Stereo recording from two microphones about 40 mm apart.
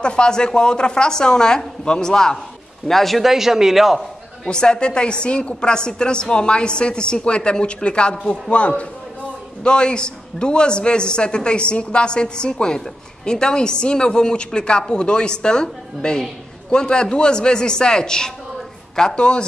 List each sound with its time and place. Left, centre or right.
0.0 s a man's voice: left
2.9 s a man's voice: centre
3.3 s speech: centre
4.5 s a man's voice: centre